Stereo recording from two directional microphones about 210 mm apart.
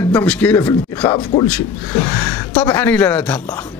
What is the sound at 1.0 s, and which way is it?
Speech, 20° left (ahead or behind).